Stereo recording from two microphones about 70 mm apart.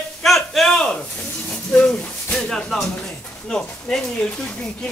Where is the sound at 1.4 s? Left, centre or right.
Centre.